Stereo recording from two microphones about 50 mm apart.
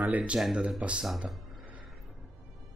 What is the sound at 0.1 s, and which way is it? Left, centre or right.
Speech, right.